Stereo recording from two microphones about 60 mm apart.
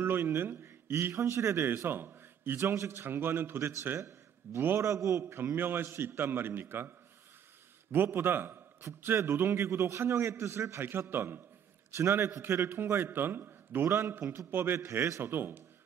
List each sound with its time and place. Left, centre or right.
0.0 s a man's voice: right
1.9 s a man's voice: right
4.8 s a man's voice: right
5.3 s a man's voice: right
7.9 s a man's voice: right
10.8 s a man's voice: right
15.0 s a man's voice: right
15.3 s a man's voice: right